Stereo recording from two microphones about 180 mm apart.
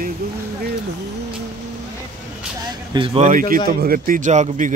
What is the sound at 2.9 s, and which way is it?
Speech, 30° right (ahead or behind).